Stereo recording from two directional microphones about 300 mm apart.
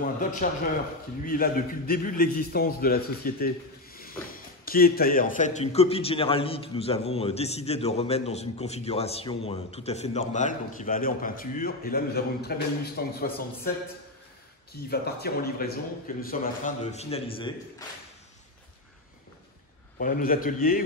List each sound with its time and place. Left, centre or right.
0.0 s a man's voice: left
14.9 s a man's voice: left
20.0 s a man's voice: left